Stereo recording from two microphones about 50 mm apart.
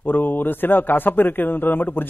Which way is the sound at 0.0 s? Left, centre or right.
Left.